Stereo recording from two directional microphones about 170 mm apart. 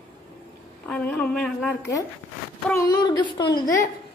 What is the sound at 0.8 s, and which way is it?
Speech, 5° left (ahead or behind).